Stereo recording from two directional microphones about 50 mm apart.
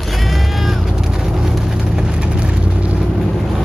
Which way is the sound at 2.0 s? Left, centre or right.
Right.